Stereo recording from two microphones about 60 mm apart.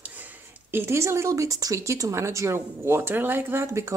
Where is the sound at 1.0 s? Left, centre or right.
Right.